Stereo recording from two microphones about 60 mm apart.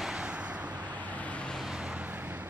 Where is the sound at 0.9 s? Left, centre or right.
Left.